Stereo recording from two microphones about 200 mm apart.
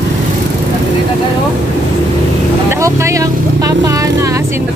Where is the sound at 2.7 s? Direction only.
15° right (ahead or behind).